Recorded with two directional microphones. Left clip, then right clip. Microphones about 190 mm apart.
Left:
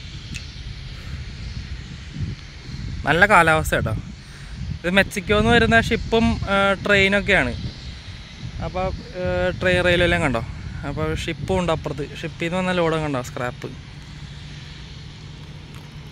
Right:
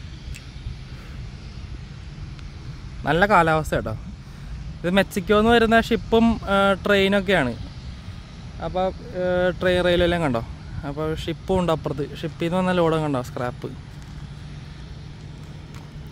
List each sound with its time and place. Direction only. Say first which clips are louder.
3.0 s speech: left 3 dB; 5° right (ahead or behind)
4.8 s speech: left 2 dB; 15° right (ahead or behind)
8.5 s speech: right 2 dB; 20° right (ahead or behind)